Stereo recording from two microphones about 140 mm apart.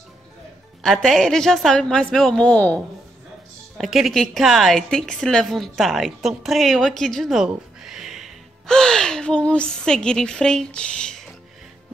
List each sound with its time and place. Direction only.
0.8 s a woman's voice: centre (ahead or behind)
3.7 s a woman's voice: centre (ahead or behind)